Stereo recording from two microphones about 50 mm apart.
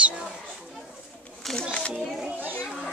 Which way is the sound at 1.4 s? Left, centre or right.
Centre.